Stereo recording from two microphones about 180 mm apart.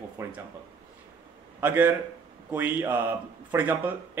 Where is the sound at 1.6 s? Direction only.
10° right (ahead or behind).